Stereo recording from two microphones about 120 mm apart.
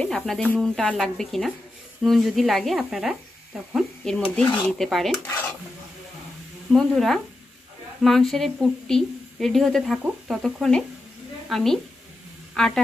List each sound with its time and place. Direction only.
0.0 s speech: 5° left (ahead or behind)
5.2 s dishes: 20° left (ahead or behind)
6.7 s a woman's voice: centre (ahead or behind)